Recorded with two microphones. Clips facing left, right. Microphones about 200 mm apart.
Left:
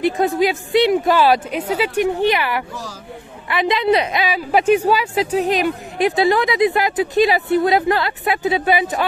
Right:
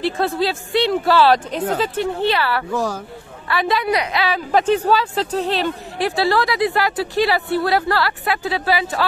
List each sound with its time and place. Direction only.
0.0 s speech: 15° left (ahead or behind)
2.7 s speech: 55° right (ahead or behind)
3.4 s a woman's voice: 20° left (ahead or behind)